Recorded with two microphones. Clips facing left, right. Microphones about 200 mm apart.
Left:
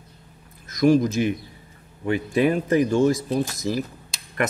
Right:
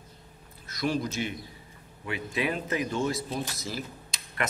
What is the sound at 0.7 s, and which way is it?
A man's voice, 45° left (ahead or behind).